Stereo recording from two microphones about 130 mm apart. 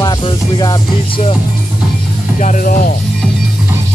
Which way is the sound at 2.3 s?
75° left (ahead or behind).